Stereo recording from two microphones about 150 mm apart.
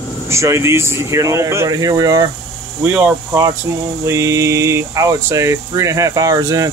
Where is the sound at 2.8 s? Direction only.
10° right (ahead or behind).